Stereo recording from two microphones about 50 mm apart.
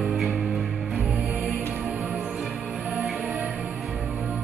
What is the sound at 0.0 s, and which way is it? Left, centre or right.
Music, centre.